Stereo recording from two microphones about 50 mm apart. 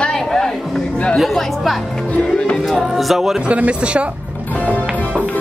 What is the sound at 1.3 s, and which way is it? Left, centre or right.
Music, centre.